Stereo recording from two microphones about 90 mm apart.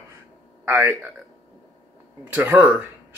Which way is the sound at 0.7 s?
30° right (ahead or behind).